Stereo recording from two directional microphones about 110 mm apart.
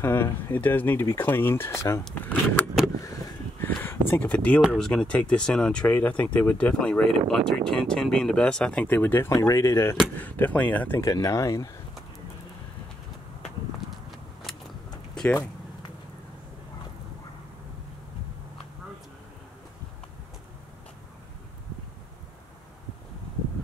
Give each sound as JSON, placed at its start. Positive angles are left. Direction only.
{"t": 0.0, "sound": "speech", "side_deg": 20}
{"t": 9.4, "sound": "speech", "side_deg": 30}
{"t": 10.2, "sound": "speech", "side_deg": 15}
{"t": 11.0, "sound": "speech", "side_deg": 30}